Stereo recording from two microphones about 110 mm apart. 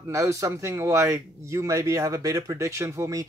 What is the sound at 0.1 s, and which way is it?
Speech, 30° right (ahead or behind).